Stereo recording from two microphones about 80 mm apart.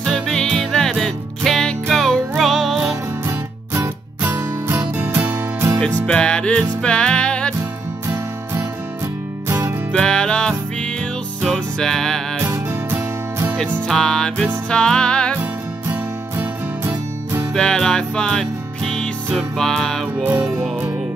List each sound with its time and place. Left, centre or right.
0.0 s music: centre
3.3 s music: right
5.8 s music: centre
9.9 s music: centre
12.4 s music: right
13.8 s music: centre
15.9 s music: right
17.6 s music: centre